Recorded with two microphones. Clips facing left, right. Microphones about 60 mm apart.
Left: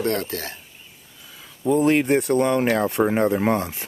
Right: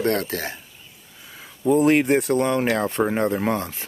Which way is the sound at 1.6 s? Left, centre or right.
Centre.